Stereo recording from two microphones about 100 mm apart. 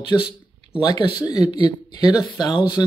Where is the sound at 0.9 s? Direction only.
45° left (ahead or behind).